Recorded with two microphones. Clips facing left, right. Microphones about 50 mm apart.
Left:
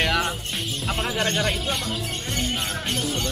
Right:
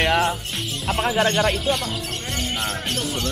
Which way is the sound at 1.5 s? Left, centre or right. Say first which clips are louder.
Right 4 dB; centre.